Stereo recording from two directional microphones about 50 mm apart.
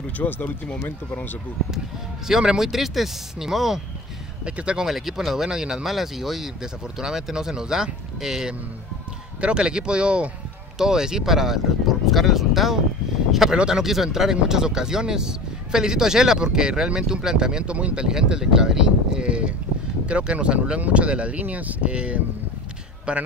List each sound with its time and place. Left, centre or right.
0.2 s speech: left
2.2 s speech: centre
4.5 s speech: right
4.8 s speech: centre
17.7 s speech: right
18.0 s speech: centre